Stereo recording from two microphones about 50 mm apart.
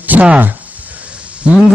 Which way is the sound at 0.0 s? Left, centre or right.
Right.